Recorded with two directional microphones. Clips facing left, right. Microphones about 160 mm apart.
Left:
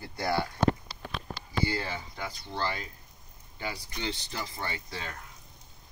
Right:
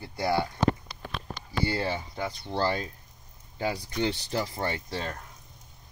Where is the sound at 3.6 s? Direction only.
50° right (ahead or behind).